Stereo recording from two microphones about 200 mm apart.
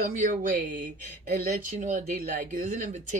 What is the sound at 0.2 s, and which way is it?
Speech, 45° right (ahead or behind).